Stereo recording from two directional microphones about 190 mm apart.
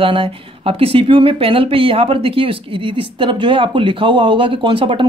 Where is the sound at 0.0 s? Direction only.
30° right (ahead or behind).